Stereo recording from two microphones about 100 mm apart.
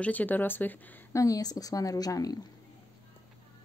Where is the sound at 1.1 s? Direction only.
35° left (ahead or behind).